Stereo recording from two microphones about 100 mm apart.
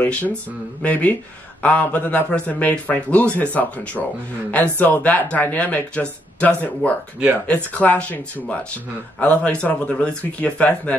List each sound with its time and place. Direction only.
0.0 s speech: 15° left (ahead or behind)